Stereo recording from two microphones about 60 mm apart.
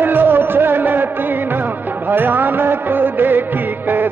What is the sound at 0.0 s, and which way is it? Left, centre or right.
Music, right.